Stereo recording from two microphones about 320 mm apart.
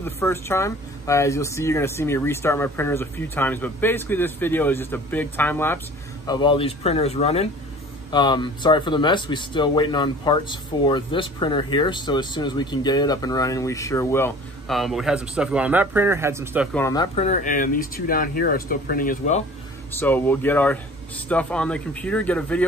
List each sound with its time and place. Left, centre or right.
0.0 s speech: centre
16.7 s speech: centre
19.9 s speech: centre